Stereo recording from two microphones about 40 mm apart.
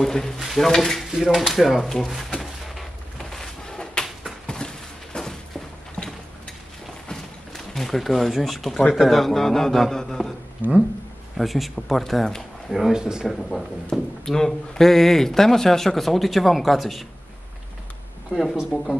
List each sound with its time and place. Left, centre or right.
0.0 s speech: centre
1.1 s speech: centre
1.4 s a sound: centre; by 6.1 s left
7.5 s speech: centre
9.2 s speech: centre
10.6 s speech: right
11.3 s speech: centre
12.9 s speech: centre
13.4 s speech: centre
18.3 s speech: centre